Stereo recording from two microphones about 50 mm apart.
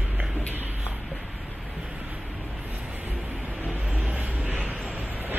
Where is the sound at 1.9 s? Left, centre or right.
Right.